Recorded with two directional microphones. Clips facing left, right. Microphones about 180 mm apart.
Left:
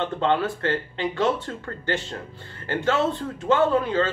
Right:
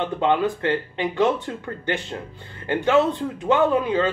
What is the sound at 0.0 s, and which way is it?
A man's voice, 15° right (ahead or behind).